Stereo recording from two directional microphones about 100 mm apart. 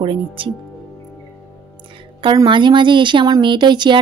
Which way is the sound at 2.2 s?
50° right (ahead or behind).